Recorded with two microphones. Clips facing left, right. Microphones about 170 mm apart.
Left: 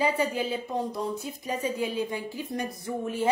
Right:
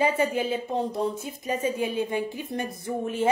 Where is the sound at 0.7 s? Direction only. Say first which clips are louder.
Right 3 dB; 25° right (ahead or behind).